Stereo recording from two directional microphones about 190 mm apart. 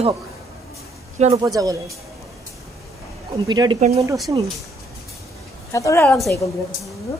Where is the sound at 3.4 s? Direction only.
20° right (ahead or behind).